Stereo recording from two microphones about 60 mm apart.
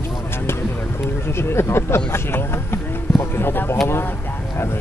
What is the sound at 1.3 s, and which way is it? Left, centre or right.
Speech, left.